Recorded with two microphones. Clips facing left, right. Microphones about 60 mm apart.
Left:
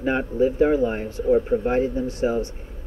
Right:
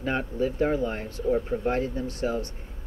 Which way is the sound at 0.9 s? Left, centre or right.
Centre.